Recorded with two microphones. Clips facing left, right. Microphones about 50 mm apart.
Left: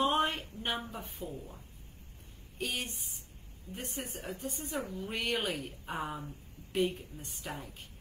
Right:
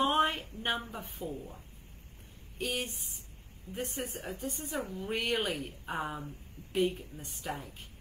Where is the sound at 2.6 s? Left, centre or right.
Centre.